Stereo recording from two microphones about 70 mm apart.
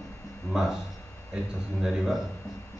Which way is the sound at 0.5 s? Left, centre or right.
Centre.